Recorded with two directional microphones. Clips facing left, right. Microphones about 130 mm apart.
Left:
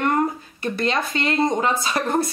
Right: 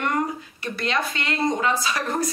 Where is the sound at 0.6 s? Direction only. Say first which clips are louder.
Left 3 dB; 30° left (ahead or behind).